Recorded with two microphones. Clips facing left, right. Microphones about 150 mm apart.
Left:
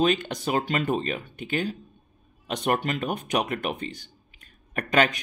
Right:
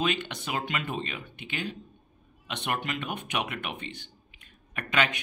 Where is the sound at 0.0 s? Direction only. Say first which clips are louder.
Left 6 dB; 40° left (ahead or behind).